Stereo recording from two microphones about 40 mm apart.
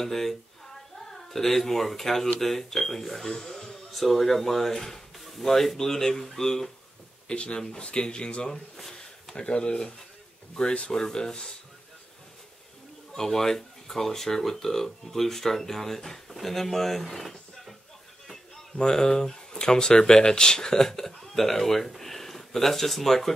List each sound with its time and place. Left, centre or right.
0.0 s speech: centre
7.2 s speech: left
8.5 s speech: centre
9.3 s speech: left
13.1 s speech: centre
18.8 s speech: centre